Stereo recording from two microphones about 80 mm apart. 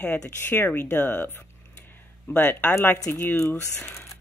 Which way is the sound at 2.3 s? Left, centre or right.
Centre.